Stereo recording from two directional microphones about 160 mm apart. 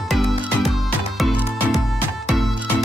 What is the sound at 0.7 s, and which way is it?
Music, centre (ahead or behind).